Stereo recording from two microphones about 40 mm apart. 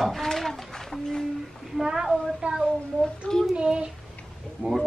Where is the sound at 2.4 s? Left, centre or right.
Right.